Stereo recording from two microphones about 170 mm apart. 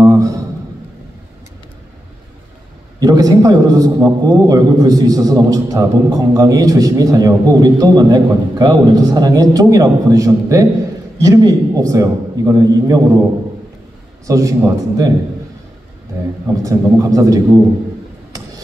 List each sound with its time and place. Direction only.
0.0 s a sound: 20° right (ahead or behind)
3.0 s a man's voice: 20° right (ahead or behind)
14.2 s a man's voice: 20° right (ahead or behind)
16.6 s a man's voice: 20° right (ahead or behind)